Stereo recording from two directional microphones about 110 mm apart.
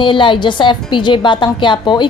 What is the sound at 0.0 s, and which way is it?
A woman's voice, 50° left (ahead or behind).